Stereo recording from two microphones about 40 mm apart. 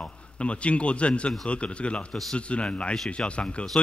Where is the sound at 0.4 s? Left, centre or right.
Left.